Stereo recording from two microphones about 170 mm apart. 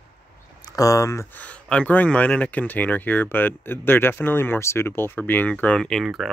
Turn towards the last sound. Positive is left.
turn(degrees=0)  # may be behind; listen again after turning